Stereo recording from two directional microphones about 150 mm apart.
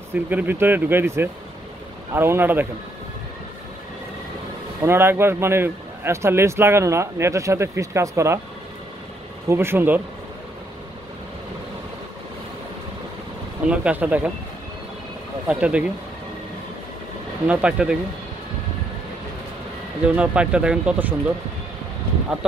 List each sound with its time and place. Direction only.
0.1 s speech: 10° right (ahead or behind)
4.8 s speech: 15° right (ahead or behind)
9.5 s speech: 15° right (ahead or behind)
13.7 s speech: 10° right (ahead or behind)
15.4 s speech: 10° right (ahead or behind)
17.5 s speech: 5° right (ahead or behind)
20.2 s speech: 5° right (ahead or behind)